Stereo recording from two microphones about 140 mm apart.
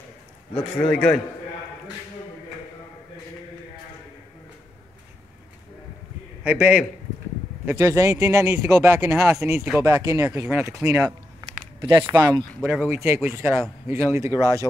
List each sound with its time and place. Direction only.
0.8 s a man's voice: 5° left (ahead or behind)
6.4 s speech: 10° right (ahead or behind)
7.6 s speech: 20° right (ahead or behind)
10.4 s speech: 10° right (ahead or behind)
11.8 s speech: 40° right (ahead or behind)
12.1 s a man's voice: 10° right (ahead or behind)
12.8 s speech: 15° right (ahead or behind)